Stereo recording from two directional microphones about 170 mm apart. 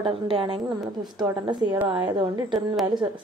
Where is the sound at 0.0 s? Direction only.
30° right (ahead or behind).